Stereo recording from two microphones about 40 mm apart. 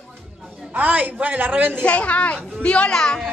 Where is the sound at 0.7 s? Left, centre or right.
Right.